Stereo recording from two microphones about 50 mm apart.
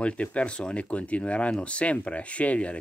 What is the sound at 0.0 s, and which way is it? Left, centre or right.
Speech, left.